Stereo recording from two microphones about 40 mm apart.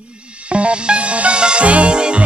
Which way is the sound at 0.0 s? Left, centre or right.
Right.